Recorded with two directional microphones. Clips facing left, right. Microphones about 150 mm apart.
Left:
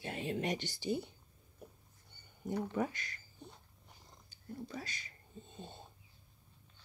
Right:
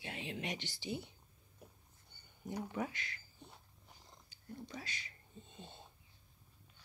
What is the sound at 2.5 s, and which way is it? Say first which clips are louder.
Speech: left 5 dB; 10° right (ahead or behind).